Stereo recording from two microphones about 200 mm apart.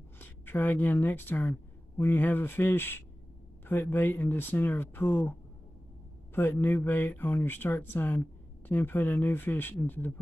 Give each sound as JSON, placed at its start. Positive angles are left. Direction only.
{"t": 0.2, "sound": "a woman's voice", "side_deg": 10}
{"t": 6.3, "sound": "speech", "side_deg": 10}